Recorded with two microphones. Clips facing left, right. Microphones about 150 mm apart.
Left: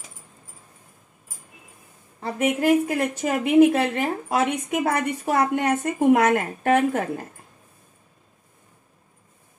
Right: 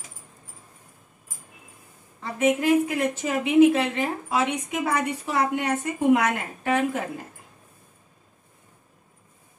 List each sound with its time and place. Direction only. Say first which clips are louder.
2.1 s a woman's voice: right 1 dB; 40° left (ahead or behind)